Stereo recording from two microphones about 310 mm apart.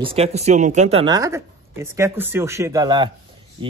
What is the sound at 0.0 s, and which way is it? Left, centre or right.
Speech, centre.